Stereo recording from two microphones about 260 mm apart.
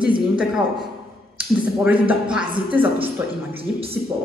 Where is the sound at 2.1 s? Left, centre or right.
Centre.